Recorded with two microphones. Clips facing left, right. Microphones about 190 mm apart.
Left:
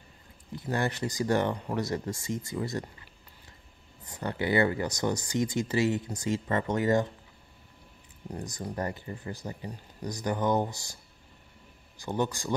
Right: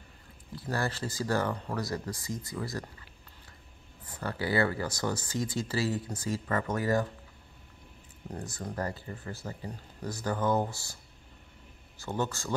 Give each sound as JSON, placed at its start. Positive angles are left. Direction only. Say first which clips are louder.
{"t": 0.6, "sound": "speech", "louder": "left 3 dB", "side_deg": 20}
{"t": 4.1, "sound": "speech", "louder": "left 3 dB", "side_deg": 20}
{"t": 8.3, "sound": "speech", "louder": "left 2 dB", "side_deg": 15}
{"t": 12.0, "sound": "speech", "louder": "left 3 dB", "side_deg": 15}